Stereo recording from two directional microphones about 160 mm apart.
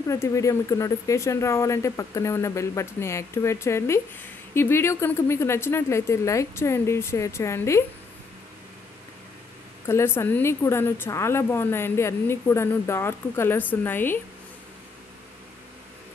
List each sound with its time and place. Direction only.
0.1 s a woman's voice: 20° left (ahead or behind)
9.8 s a woman's voice: 15° left (ahead or behind)